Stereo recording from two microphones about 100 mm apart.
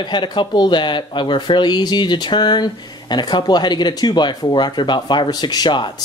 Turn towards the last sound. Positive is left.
turn(degrees=50)  # may be behind; listen again after turning